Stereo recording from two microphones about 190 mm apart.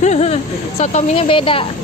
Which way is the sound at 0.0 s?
35° left (ahead or behind).